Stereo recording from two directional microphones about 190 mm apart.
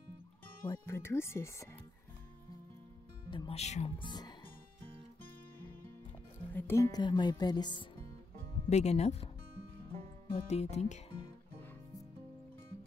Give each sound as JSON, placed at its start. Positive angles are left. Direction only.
{"t": 0.7, "sound": "speech", "side_deg": 15}
{"t": 3.3, "sound": "speech", "side_deg": 25}
{"t": 6.5, "sound": "speech", "side_deg": 15}
{"t": 8.6, "sound": "speech", "side_deg": 35}
{"t": 10.3, "sound": "speech", "side_deg": 35}
{"t": 11.1, "sound": "music", "side_deg": -35}